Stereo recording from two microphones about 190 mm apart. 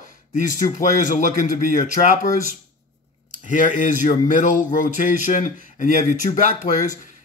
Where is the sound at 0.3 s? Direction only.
40° left (ahead or behind).